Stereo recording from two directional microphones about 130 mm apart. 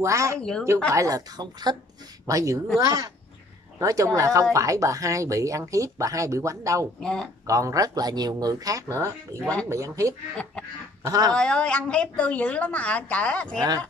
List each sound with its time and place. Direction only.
0.0 s speech: 25° right (ahead or behind)
0.4 s speech: 5° left (ahead or behind)
0.9 s a woman's voice: 25° right (ahead or behind)
7.0 s speech: 5° left (ahead or behind)
7.4 s speech: 25° right (ahead or behind)
11.3 s a woman's voice: 5° left (ahead or behind)